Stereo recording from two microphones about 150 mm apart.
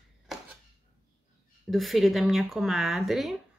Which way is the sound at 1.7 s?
Centre (ahead or behind).